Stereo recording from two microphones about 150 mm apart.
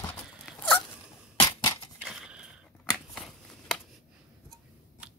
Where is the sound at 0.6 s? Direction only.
15° left (ahead or behind).